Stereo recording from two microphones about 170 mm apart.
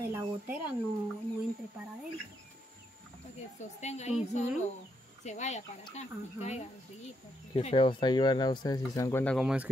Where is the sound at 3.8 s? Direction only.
40° left (ahead or behind).